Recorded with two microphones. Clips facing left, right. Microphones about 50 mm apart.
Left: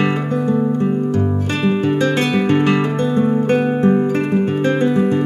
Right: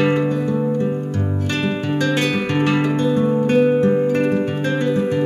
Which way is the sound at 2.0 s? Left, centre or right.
Left.